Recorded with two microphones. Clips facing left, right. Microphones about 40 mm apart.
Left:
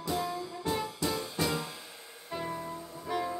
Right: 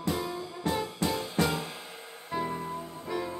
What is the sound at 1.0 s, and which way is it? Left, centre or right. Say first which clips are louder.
Music: right 5 dB; right.